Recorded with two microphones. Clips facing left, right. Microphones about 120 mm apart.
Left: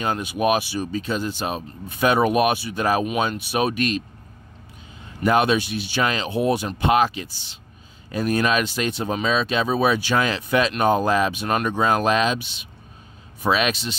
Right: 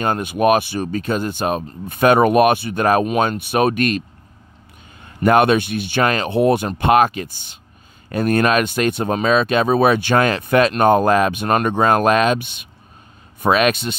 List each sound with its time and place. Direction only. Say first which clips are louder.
0.0 s speech: right 5 dB; 50° right (ahead or behind)
5.0 s speech: right 5 dB; 55° right (ahead or behind)